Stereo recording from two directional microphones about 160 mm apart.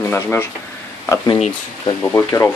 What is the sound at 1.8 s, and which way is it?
Speech, 20° left (ahead or behind).